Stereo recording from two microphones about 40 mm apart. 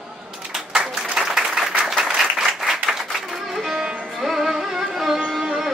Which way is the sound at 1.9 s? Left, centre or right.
Centre.